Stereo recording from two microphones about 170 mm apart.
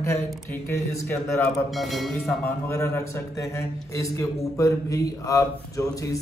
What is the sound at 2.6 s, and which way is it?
A man's voice, 15° left (ahead or behind).